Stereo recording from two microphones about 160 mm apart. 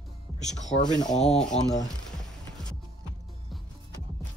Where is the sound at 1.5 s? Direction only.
40° left (ahead or behind).